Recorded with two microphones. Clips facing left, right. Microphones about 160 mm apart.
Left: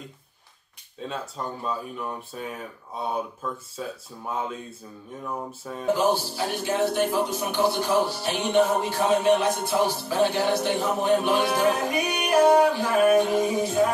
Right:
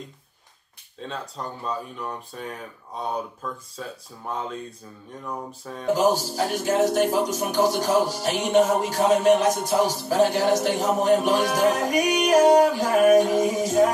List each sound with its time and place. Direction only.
1.0 s speech: 5° left (ahead or behind)
5.9 s speech: 40° right (ahead or behind)